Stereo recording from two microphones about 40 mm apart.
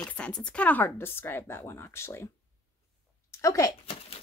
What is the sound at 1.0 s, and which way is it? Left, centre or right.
Speech, left.